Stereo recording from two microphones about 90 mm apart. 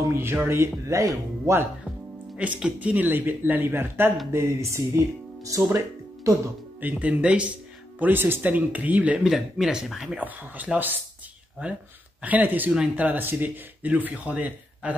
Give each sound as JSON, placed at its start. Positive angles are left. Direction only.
{"t": 0.1, "sound": "speech", "side_deg": -25}
{"t": 2.3, "sound": "speech", "side_deg": -15}
{"t": 6.8, "sound": "speech", "side_deg": -15}
{"t": 8.0, "sound": "speech", "side_deg": -25}
{"t": 10.2, "sound": "speech", "side_deg": -15}